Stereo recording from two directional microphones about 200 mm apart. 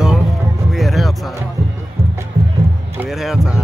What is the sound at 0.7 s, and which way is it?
Music, centre (ahead or behind).